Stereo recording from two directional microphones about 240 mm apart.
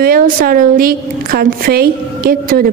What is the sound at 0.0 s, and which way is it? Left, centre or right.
A woman's voice, right.